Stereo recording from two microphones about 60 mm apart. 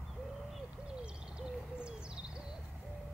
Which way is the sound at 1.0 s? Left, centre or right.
Centre.